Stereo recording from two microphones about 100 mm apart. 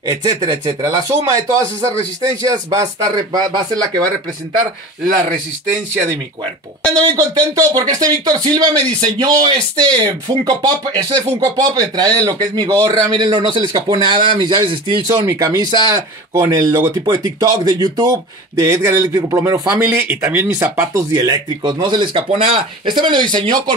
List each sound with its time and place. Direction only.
0.0 s speech: 45° right (ahead or behind)
7.1 s speech: 45° right (ahead or behind)
13.1 s speech: 50° right (ahead or behind)
15.1 s speech: 35° right (ahead or behind)
20.0 s speech: 20° right (ahead or behind)
20.9 s speech: 40° right (ahead or behind)
22.3 s speech: 90° right
22.8 s speech: 50° right (ahead or behind)